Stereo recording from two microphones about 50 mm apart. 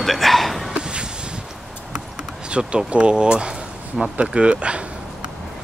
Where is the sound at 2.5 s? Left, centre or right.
Centre.